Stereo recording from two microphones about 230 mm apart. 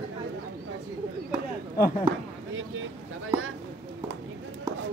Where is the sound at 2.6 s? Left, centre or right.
Right.